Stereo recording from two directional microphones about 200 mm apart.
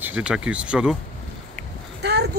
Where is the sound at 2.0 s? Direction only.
55° right (ahead or behind).